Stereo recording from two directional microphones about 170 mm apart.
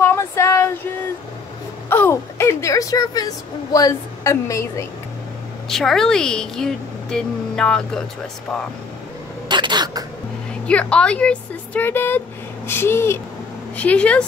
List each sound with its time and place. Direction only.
0.0 s female singing: 15° left (ahead or behind)
1.9 s a woman's voice: 15° left (ahead or behind)
5.7 s a woman's voice: centre (ahead or behind)
9.5 s speech: 25° right (ahead or behind)
10.7 s a woman's voice: 5° left (ahead or behind)